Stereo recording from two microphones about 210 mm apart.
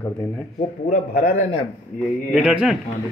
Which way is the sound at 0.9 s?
35° left (ahead or behind).